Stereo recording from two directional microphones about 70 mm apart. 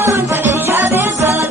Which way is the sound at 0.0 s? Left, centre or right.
Right.